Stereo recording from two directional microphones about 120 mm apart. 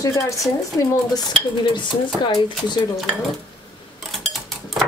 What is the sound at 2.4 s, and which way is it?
Speech, 40° left (ahead or behind).